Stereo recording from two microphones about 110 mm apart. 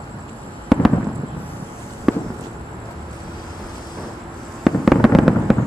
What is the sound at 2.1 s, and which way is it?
Fireworks, 5° right (ahead or behind).